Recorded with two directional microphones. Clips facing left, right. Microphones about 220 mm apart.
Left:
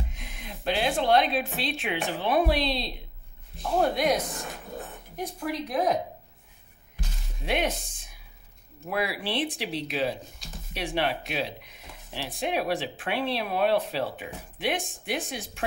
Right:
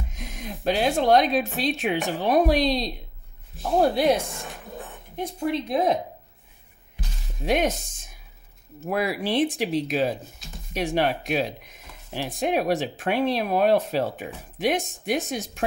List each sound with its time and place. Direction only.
0.1 s a woman's voice: 45° right (ahead or behind); by 5.9 s 25° right (ahead or behind)
7.4 s speech: 45° right (ahead or behind)